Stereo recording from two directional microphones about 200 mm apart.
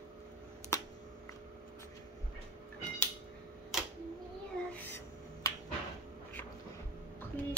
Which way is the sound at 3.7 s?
Centre (ahead or behind).